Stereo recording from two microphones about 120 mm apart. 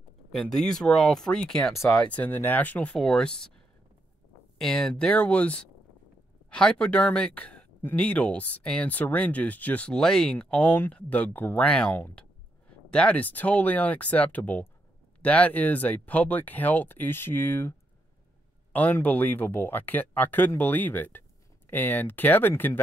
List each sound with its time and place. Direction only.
0.3 s speech: 5° left (ahead or behind)
4.6 s speech: 5° left (ahead or behind)